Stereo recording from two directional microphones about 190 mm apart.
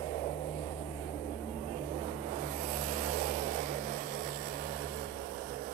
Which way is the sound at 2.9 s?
40° right (ahead or behind).